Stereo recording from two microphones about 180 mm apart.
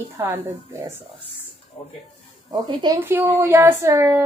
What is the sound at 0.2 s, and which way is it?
Speech, 15° right (ahead or behind).